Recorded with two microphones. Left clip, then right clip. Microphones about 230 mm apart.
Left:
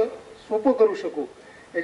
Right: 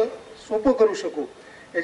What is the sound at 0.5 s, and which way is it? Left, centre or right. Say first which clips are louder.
Speech: even; left.